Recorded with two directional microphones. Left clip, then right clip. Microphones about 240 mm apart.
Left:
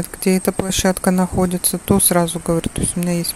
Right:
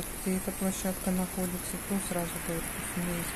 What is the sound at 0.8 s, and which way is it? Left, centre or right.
Speech, left.